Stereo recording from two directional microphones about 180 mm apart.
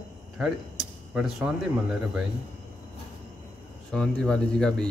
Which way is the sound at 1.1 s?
5° right (ahead or behind).